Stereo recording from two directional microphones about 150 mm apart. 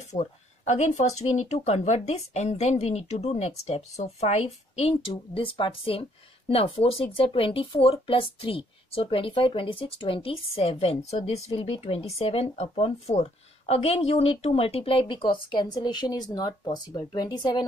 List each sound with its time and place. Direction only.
0.2 s speech: 50° left (ahead or behind); by 17.6 s 30° left (ahead or behind)